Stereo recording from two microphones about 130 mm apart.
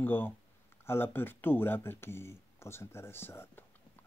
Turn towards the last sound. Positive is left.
turn(degrees=15)  # may be behind; listen again after turning